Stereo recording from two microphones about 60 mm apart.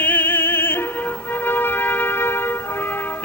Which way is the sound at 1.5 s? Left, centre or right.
Left.